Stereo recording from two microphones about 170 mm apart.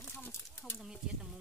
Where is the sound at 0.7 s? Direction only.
5° right (ahead or behind).